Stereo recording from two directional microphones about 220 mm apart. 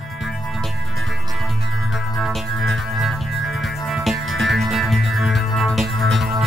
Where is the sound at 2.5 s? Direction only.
65° right (ahead or behind).